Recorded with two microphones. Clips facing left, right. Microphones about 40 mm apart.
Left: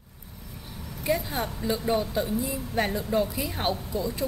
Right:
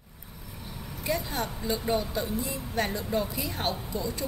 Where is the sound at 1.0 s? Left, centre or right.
Centre.